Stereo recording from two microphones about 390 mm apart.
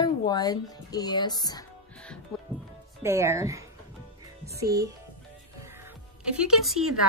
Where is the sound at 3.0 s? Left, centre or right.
Centre.